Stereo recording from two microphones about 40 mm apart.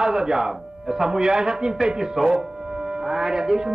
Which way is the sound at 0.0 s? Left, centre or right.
Centre.